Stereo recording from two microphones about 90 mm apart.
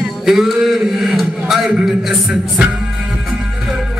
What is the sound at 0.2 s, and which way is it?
A man's voice, 5° right (ahead or behind).